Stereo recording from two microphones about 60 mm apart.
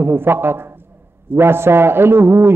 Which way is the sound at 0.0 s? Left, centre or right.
Right.